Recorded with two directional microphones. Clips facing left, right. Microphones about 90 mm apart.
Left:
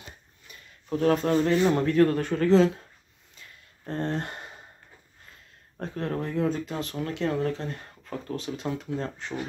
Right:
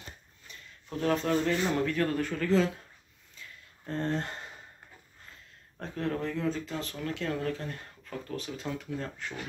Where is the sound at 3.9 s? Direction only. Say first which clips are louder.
Left 2 dB; 20° left (ahead or behind).